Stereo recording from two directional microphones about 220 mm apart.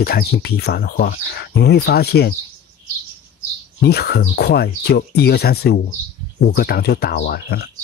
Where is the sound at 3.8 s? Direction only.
45° left (ahead or behind).